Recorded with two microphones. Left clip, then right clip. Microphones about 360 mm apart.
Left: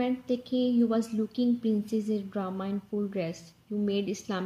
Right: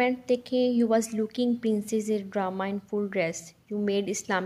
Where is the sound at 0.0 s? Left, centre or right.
Centre.